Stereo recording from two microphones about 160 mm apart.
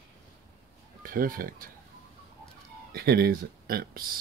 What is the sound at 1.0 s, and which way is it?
Speech, 60° right (ahead or behind).